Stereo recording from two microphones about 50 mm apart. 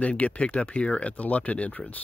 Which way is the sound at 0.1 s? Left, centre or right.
Left.